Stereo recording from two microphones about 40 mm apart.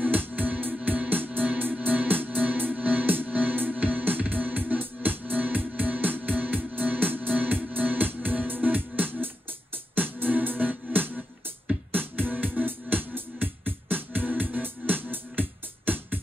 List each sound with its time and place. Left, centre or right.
0.0 s music: right